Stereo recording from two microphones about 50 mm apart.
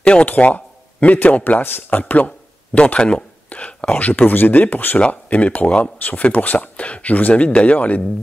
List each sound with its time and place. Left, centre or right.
0.0 s speech: left
5.0 s speech: left